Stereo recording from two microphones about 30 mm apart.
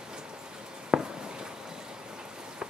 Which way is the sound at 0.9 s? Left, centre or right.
Centre.